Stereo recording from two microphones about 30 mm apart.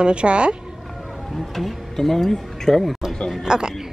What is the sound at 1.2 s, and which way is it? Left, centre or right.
Speech, centre.